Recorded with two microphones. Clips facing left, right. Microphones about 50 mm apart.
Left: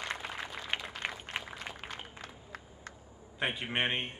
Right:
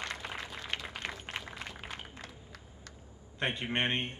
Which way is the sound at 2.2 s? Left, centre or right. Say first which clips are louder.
Left 3 dB; left.